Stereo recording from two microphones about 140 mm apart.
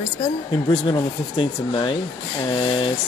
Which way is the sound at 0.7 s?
40° left (ahead or behind).